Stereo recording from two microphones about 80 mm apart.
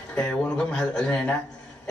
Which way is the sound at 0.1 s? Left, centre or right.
Centre.